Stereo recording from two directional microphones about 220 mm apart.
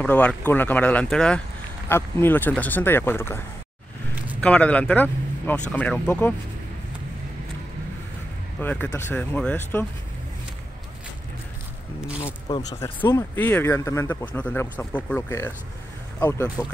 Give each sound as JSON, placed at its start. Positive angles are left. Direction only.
{"t": 0.0, "sound": "speech", "side_deg": 5}
{"t": 4.4, "sound": "speech", "side_deg": 5}
{"t": 8.5, "sound": "speech", "side_deg": 10}
{"t": 12.5, "sound": "speech", "side_deg": 20}